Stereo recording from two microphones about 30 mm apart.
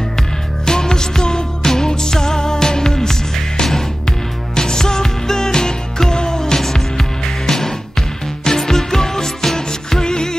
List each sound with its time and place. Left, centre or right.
0.7 s music: left